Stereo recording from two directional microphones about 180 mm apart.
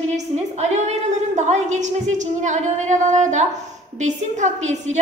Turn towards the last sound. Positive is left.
turn(degrees=-40)  # may be behind; listen again after turning